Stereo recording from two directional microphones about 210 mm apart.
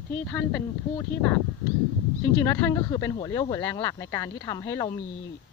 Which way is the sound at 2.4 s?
15° left (ahead or behind).